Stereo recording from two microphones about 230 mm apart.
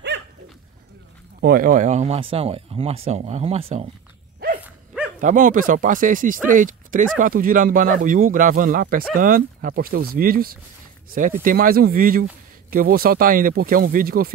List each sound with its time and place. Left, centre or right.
1.4 s speech: right
4.6 s dog: centre
5.2 s speech: right